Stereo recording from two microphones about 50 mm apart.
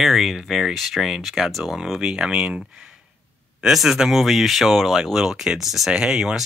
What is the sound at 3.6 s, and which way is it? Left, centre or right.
Speech, centre.